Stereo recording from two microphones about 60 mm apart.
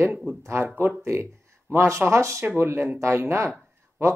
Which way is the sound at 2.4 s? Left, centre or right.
Right.